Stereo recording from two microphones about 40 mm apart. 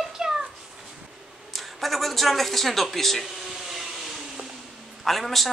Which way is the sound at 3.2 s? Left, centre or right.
Centre.